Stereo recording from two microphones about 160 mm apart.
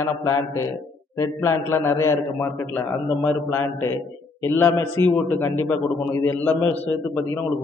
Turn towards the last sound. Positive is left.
turn(degrees=15)  # may be behind; listen again after turning